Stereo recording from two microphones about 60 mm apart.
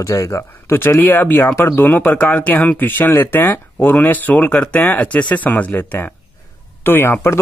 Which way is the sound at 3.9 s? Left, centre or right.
Left.